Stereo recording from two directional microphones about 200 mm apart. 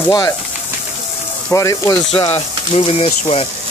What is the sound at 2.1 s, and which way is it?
Speech, 30° left (ahead or behind).